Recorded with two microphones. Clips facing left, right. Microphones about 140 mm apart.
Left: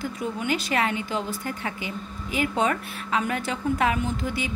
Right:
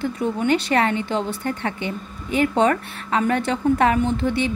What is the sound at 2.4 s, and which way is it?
Speech, 65° right (ahead or behind).